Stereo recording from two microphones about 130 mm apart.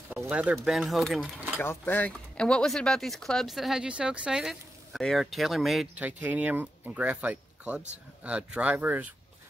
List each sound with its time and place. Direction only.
0.1 s speech: 15° right (ahead or behind)
1.6 s speech: 15° left (ahead or behind); by 5.9 s centre (ahead or behind)
5.9 s speech: 10° right (ahead or behind)